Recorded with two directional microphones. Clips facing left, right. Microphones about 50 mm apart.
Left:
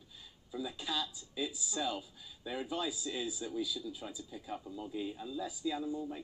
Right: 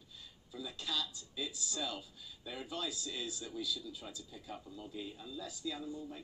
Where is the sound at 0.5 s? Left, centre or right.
Centre.